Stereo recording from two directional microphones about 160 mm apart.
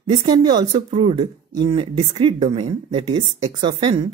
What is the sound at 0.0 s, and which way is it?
Speech, 30° right (ahead or behind).